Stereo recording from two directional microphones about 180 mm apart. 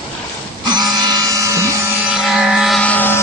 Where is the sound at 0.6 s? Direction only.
20° right (ahead or behind).